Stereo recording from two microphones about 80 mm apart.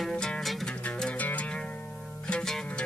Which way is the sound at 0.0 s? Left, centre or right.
Centre.